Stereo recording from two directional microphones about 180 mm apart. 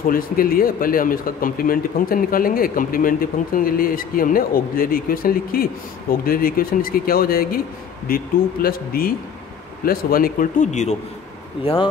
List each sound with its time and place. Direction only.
0.0 s a man's voice: 50° left (ahead or behind); by 11.9 s 30° left (ahead or behind)